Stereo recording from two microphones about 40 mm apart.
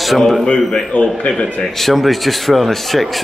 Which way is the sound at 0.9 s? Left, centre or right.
Left.